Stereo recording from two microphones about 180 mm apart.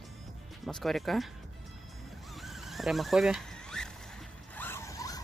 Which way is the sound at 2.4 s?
Centre (ahead or behind).